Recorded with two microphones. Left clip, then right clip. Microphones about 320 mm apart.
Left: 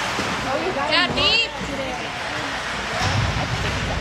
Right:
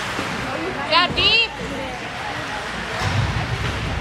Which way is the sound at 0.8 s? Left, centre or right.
Centre.